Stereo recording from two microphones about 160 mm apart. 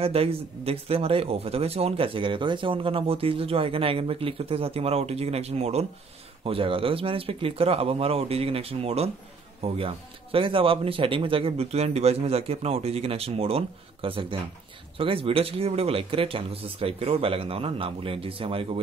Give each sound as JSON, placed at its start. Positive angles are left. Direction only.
{"t": 0.0, "sound": "speech", "side_deg": -35}